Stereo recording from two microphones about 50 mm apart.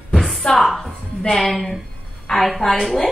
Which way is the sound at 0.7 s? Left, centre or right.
Centre.